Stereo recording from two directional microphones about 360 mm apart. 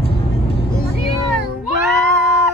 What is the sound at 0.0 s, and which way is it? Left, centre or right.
Vehicle, centre.